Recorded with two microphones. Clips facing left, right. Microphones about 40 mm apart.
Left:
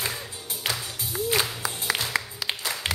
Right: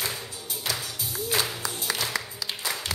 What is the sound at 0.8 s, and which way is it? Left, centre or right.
Music, centre.